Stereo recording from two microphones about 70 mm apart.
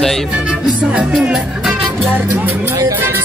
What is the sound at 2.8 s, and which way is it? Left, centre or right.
Music, right.